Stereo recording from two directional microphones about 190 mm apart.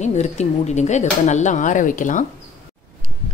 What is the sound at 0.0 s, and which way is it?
Speech, 35° left (ahead or behind).